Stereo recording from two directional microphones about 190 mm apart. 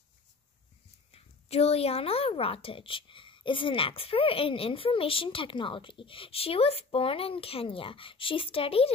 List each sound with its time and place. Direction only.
1.1 s a woman's voice: 30° left (ahead or behind)